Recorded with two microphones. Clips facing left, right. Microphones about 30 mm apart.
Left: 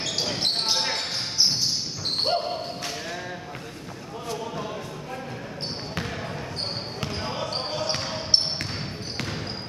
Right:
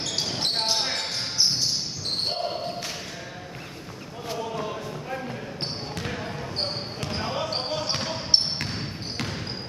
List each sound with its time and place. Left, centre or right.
0.0 s basketball bounce: centre
4.4 s basketball bounce: centre
7.2 s basketball bounce: centre